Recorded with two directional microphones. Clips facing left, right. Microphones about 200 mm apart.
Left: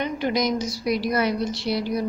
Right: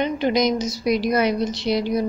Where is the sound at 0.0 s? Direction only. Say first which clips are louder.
Right 4 dB; 20° right (ahead or behind).